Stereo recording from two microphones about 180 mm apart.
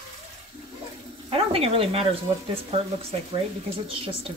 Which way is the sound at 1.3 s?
30° right (ahead or behind).